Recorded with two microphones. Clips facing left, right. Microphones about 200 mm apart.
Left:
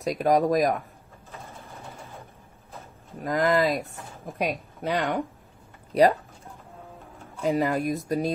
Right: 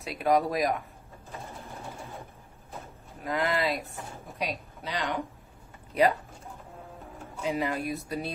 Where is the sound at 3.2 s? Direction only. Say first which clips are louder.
Left 6 dB; 45° left (ahead or behind).